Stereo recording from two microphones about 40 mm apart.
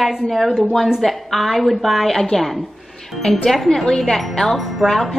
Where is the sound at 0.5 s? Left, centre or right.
Right.